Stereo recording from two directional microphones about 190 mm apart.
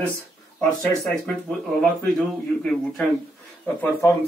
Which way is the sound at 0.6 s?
5° left (ahead or behind).